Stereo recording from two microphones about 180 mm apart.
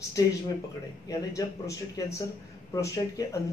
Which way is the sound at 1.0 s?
20° left (ahead or behind).